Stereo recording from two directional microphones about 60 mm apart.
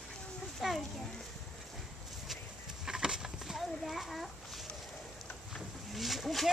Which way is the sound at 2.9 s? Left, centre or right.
Centre.